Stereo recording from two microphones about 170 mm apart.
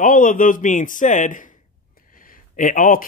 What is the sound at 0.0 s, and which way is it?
Speech, 55° left (ahead or behind).